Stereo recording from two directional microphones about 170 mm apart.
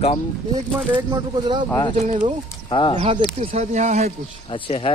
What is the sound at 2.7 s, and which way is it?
Speech, 30° left (ahead or behind).